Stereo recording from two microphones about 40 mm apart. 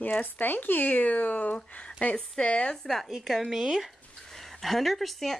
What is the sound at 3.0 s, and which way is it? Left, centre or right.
Speech, centre.